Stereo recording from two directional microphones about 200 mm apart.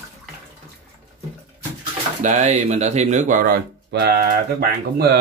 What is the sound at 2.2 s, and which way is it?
Speech, 35° right (ahead or behind).